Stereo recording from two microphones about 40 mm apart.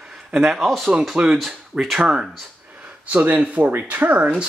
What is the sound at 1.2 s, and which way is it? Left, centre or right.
Speech, right.